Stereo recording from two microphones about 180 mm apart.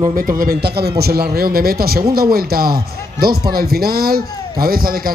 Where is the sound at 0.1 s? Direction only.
50° right (ahead or behind).